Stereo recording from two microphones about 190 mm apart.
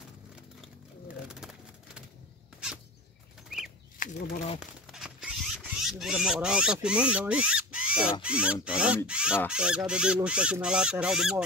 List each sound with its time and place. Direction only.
1.4 s vehicle: 5° right (ahead or behind)
4.0 s a sound: 45° left (ahead or behind)
4.6 s speech: 5° right (ahead or behind)